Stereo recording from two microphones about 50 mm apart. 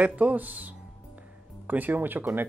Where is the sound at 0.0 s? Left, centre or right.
Right.